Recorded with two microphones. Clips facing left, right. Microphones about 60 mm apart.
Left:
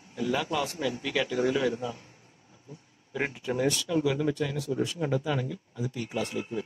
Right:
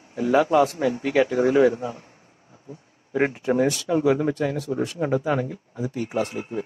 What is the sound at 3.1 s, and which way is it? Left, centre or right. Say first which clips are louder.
Speech: right 9 dB; right.